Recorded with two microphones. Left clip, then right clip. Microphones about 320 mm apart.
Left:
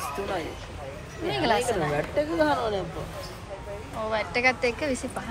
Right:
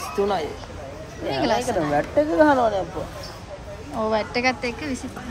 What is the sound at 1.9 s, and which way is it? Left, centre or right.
Speech, right.